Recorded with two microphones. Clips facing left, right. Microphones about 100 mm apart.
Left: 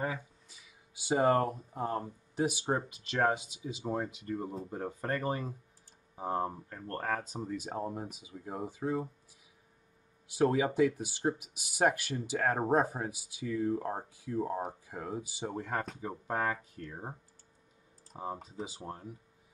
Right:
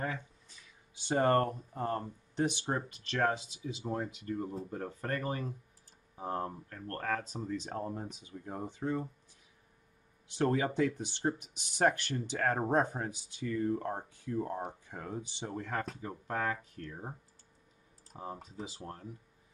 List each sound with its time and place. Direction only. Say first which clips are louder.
0.0 s speech: left 2 dB; 10° left (ahead or behind)
10.2 s speech: left 2 dB; 5° left (ahead or behind)
18.1 s speech: left 3 dB; 10° left (ahead or behind)